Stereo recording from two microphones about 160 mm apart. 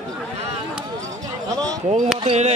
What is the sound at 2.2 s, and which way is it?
Speech, 45° right (ahead or behind).